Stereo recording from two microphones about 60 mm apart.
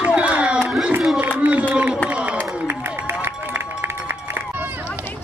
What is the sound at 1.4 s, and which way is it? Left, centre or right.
Run, right.